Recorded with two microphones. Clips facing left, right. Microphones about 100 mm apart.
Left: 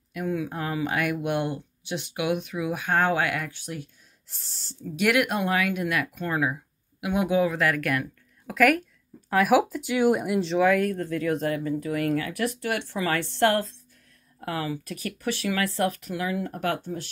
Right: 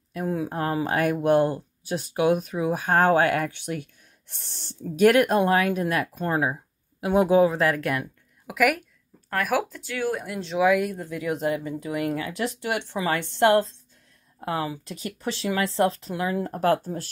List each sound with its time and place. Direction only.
0.1 s speech: 30° right (ahead or behind); by 4.9 s 60° right (ahead or behind)
4.9 s speech: 40° right (ahead or behind); by 8.1 s 25° right (ahead or behind)
8.5 s speech: 10° right (ahead or behind)
9.3 s speech: 5° left (ahead or behind)
10.6 s speech: 10° right (ahead or behind); by 17.1 s 40° right (ahead or behind)